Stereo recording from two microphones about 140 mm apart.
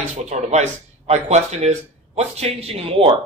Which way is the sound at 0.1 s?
55° right (ahead or behind).